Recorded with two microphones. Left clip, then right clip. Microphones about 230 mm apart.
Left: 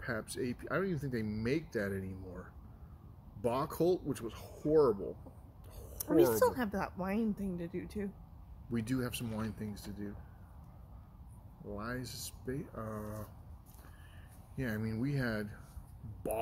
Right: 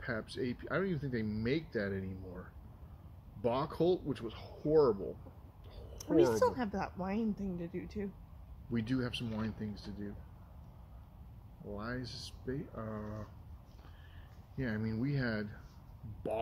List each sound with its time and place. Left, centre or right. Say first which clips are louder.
0.0 s speech: even; centre
3.4 s speech: even; centre
5.9 s speech: left 1 dB; centre
11.7 s speech: even; centre
14.6 s speech: even; centre